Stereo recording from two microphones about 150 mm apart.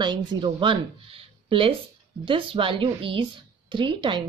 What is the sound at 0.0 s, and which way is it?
Speech, 30° right (ahead or behind).